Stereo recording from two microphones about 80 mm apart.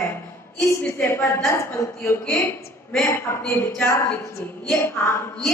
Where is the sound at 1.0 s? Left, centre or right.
Left.